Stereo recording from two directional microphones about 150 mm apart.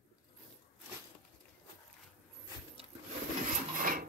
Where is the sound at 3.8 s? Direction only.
65° right (ahead or behind).